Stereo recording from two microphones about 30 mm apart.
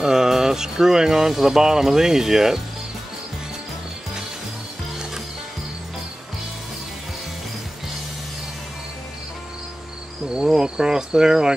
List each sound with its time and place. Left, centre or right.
0.0 s speech: centre
10.2 s insect: right
10.5 s cricket: right